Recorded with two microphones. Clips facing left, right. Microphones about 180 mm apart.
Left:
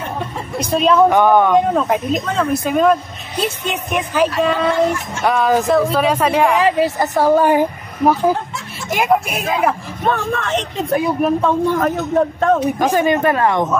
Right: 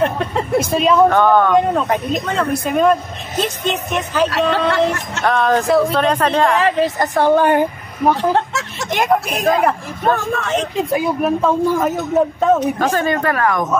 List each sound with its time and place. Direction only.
0.0 s a woman's voice: 75° right (ahead or behind)
0.6 s speech: centre (ahead or behind)
1.0 s a woman's voice: 15° left (ahead or behind)
1.5 s a woman's voice: centre (ahead or behind)
4.3 s speech: 75° right (ahead or behind)
5.2 s speech: 5° left (ahead or behind)
8.2 s speech: 80° right
8.9 s a woman's voice: 5° left (ahead or behind)
12.5 s a woman's voice: 15° left (ahead or behind)